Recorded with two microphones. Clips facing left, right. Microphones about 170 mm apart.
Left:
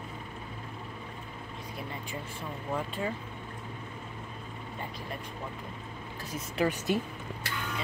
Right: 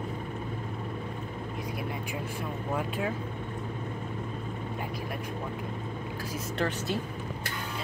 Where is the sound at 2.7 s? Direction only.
5° right (ahead or behind).